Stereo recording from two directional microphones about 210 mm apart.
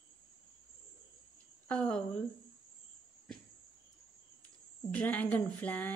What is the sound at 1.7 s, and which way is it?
Speech, 5° left (ahead or behind).